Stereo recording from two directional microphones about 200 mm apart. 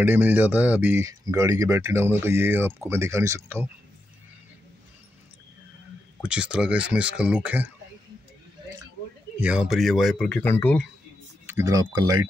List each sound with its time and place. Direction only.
0.0 s speech: 10° right (ahead or behind)
6.2 s a man's voice: 5° right (ahead or behind)
9.4 s a man's voice: 5° right (ahead or behind)
11.4 s speech: 15° right (ahead or behind)